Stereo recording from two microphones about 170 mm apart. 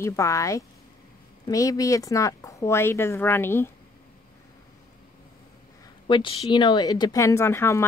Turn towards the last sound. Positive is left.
turn(degrees=15)  # may be behind; listen again after turning